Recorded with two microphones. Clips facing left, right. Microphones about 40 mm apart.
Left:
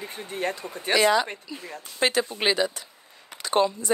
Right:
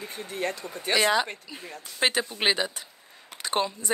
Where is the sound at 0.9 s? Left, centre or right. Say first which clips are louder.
Left 3 dB; centre.